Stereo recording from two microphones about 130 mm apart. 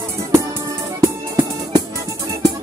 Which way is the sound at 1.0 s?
30° right (ahead or behind).